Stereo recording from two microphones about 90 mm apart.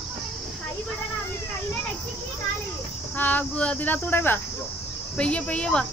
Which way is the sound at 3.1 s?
20° left (ahead or behind).